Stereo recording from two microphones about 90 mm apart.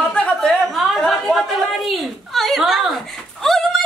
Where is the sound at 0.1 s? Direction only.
5° left (ahead or behind).